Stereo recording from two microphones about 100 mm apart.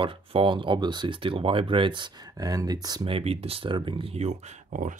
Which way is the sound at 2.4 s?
40° right (ahead or behind).